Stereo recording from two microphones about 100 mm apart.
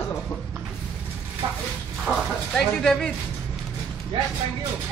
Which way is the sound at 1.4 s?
50° right (ahead or behind).